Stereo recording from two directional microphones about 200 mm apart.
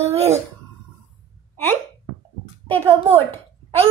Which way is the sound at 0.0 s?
30° right (ahead or behind).